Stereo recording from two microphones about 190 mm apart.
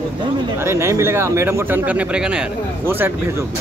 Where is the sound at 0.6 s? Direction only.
15° right (ahead or behind).